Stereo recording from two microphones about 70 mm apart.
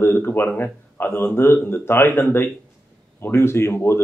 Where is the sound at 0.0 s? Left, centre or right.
Left.